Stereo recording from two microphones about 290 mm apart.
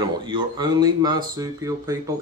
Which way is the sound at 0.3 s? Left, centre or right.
Centre.